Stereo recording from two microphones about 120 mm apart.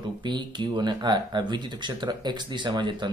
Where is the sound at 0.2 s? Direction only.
40° right (ahead or behind).